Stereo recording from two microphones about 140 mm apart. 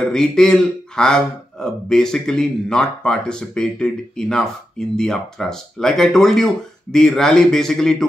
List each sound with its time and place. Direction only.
0.0 s speech: 5° left (ahead or behind)